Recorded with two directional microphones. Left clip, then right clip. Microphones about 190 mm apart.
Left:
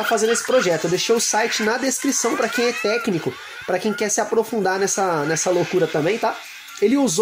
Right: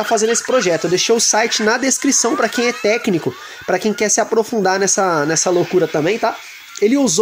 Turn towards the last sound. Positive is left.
turn(degrees=-30)  # may be behind; listen again after turning